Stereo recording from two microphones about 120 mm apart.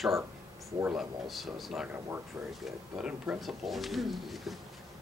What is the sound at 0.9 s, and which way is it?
Speech, centre (ahead or behind).